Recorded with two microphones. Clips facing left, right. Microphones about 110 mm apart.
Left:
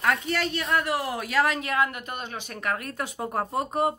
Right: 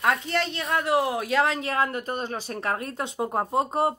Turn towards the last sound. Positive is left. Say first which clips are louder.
# right 3 dB
turn(degrees=-20)  # may be behind; listen again after turning